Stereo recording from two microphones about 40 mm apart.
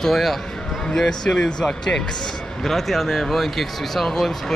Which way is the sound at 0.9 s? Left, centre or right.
Centre.